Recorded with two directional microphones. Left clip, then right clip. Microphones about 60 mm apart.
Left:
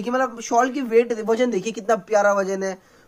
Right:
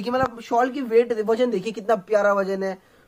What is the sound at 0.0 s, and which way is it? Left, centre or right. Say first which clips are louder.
A man's voice: left 1 dB; centre.